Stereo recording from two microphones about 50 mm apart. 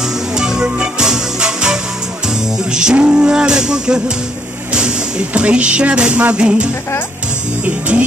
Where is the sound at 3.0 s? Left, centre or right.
Right.